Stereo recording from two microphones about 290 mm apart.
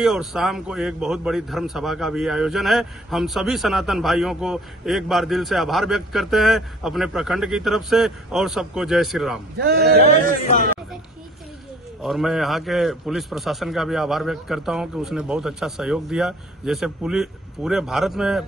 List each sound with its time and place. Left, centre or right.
0.0 s a man's voice: centre
9.6 s speech: right
12.0 s a man's voice: centre